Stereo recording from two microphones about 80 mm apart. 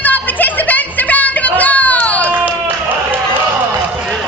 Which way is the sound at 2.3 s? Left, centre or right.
Right.